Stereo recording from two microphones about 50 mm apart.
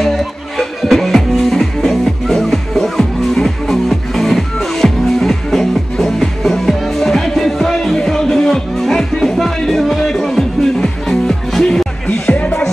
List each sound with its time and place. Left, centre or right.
0.0 s music: centre
12.3 s music: left